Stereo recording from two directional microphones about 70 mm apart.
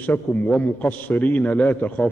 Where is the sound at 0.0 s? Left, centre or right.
Left.